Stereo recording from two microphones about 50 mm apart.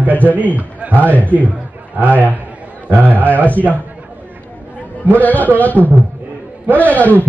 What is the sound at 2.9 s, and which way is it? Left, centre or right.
Speech, right.